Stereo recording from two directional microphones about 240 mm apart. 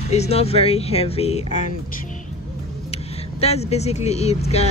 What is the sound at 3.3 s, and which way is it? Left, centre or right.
Speech, left.